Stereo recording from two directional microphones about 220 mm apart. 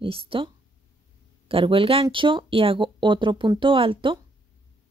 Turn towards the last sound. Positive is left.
turn(degrees=-25)  # may be behind; listen again after turning